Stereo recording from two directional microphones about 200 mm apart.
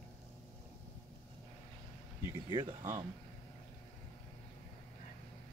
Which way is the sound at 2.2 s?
20° right (ahead or behind).